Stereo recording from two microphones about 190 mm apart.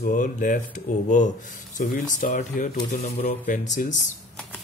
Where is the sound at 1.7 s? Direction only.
45° left (ahead or behind).